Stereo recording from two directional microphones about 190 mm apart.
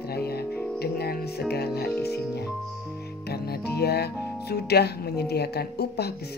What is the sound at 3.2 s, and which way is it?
Music, 55° left (ahead or behind).